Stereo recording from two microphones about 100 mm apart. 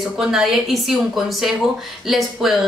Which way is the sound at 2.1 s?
Centre (ahead or behind).